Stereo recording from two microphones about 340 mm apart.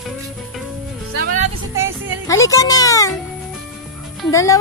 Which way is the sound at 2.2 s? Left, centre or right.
Centre.